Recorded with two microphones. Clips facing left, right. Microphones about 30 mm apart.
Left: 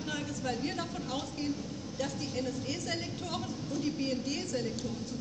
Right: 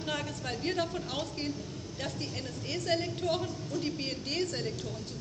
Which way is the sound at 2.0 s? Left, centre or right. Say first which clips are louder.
Left 3 dB; right.